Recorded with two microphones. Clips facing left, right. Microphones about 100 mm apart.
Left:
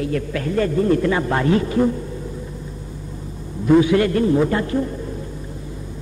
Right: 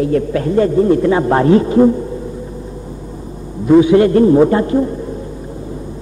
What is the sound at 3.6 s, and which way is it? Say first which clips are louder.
A man's voice: right 6 dB; 20° right (ahead or behind).